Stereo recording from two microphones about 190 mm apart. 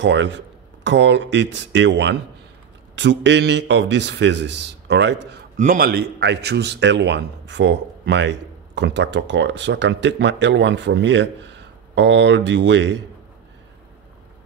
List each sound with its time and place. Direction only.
0.0 s a man's voice: 70° right (ahead or behind)
5.6 s a man's voice: 50° right (ahead or behind); by 13.0 s 70° right (ahead or behind)